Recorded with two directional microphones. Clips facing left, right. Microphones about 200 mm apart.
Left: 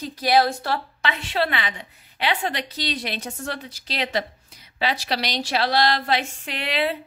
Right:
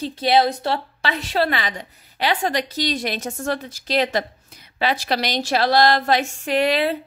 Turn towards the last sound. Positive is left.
turn(degrees=-45)  # may be behind; listen again after turning